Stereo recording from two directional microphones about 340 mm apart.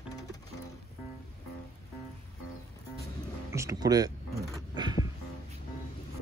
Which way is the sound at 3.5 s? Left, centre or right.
Centre.